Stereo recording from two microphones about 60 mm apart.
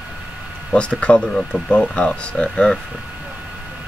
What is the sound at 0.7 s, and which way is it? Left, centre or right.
Speech, centre.